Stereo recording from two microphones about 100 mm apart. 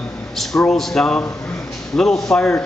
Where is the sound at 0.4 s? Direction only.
5° left (ahead or behind).